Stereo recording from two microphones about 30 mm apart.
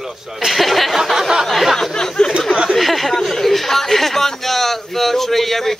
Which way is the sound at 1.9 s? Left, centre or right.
Left.